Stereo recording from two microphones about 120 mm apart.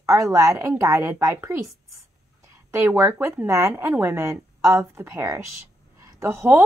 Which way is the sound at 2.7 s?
20° right (ahead or behind).